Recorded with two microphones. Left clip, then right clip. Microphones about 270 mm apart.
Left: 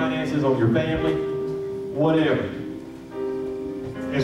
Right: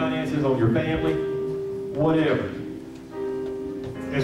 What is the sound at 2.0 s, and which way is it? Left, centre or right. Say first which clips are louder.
Speech: left 1 dB; left.